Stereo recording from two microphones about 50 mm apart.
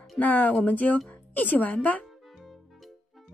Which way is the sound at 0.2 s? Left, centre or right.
Left.